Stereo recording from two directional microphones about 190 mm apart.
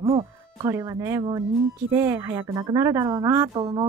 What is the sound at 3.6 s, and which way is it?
Speech, 30° right (ahead or behind).